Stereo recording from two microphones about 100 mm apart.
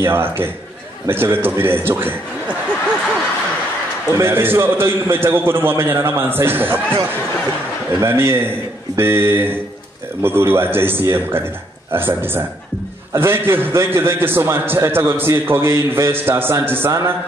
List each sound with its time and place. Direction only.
0.0 s a man's voice: 25° right (ahead or behind)
4.1 s a man's voice: 25° right (ahead or behind)
8.0 s a man's voice: 25° right (ahead or behind)